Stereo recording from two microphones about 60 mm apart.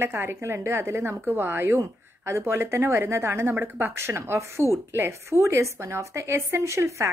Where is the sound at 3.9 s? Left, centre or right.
Right.